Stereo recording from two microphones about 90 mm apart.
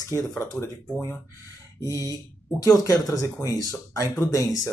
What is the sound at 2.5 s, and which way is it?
Speech, 40° left (ahead or behind).